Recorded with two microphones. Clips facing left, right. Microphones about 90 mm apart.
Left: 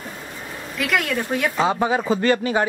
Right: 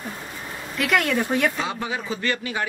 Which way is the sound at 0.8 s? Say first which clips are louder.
Right 1 dB; centre (ahead or behind).